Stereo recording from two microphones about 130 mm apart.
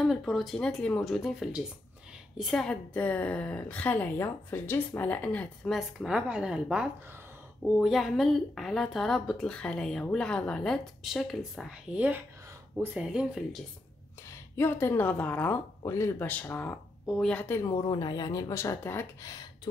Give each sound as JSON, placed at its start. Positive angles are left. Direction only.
{"t": 0.0, "sound": "a woman's voice", "side_deg": 0}
{"t": 5.8, "sound": "a woman's voice", "side_deg": -5}
{"t": 11.9, "sound": "a woman's voice", "side_deg": -10}
{"t": 14.6, "sound": "a woman's voice", "side_deg": 20}
{"t": 17.6, "sound": "speech", "side_deg": 30}